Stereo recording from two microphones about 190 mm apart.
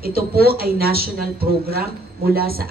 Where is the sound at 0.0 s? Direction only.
55° right (ahead or behind).